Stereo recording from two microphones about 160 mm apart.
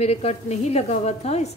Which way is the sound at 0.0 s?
45° left (ahead or behind).